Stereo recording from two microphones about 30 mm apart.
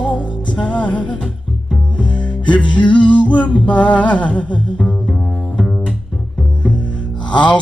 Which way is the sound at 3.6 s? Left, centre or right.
Left.